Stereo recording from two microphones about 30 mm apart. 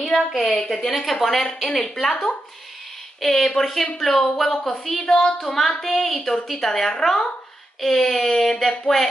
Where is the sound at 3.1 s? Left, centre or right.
Centre.